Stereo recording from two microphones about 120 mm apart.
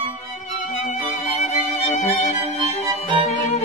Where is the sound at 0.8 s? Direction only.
80° left.